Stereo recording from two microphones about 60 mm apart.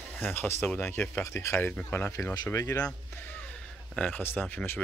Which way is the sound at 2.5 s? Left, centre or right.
Left.